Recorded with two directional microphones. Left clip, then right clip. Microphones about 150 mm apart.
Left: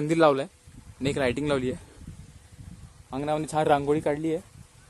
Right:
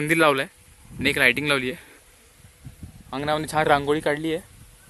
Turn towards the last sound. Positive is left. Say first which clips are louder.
# right 2 dB
turn(degrees=10)  # may be behind; listen again after turning